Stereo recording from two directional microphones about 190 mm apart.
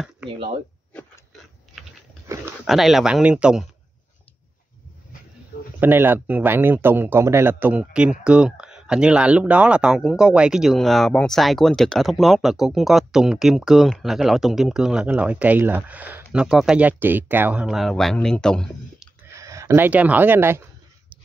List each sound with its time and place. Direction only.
2.6 s speech: centre (ahead or behind)
5.8 s speech: 10° right (ahead or behind)
19.3 s speech: 15° right (ahead or behind)